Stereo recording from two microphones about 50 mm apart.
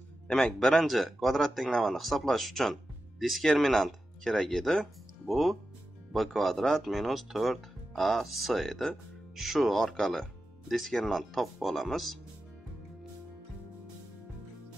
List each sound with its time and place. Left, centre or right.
0.3 s a man's voice: centre
0.7 s speech: centre